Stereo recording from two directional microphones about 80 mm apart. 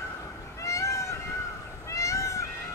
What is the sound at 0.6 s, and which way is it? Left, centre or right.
Cat, left.